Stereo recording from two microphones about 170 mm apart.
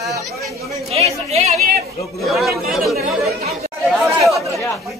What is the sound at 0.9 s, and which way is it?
Speech, 40° right (ahead or behind).